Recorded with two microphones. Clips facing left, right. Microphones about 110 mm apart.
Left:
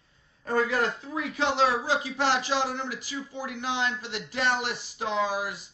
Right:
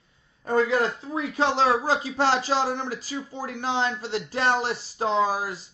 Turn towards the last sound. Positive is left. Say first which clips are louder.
# right 4 dB
turn(degrees=-40)  # may be behind; listen again after turning